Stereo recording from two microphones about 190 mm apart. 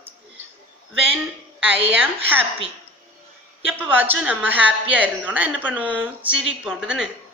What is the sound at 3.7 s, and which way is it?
A woman's voice, 10° right (ahead or behind).